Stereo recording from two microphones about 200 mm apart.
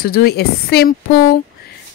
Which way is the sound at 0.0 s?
50° left (ahead or behind).